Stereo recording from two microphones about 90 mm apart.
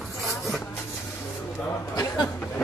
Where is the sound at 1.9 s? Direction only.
40° left (ahead or behind).